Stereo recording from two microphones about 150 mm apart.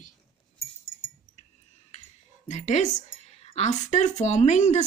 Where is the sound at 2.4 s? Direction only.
50° left (ahead or behind).